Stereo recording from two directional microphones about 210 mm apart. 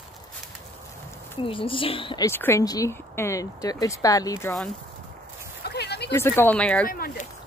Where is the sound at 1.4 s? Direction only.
25° left (ahead or behind).